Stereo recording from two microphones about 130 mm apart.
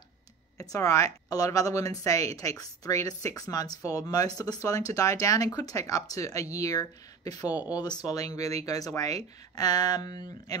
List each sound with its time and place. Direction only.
0.6 s speech: 25° left (ahead or behind)